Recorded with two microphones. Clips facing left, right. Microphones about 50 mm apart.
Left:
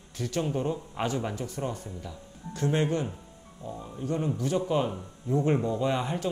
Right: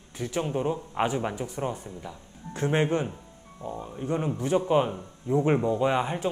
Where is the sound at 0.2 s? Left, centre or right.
Centre.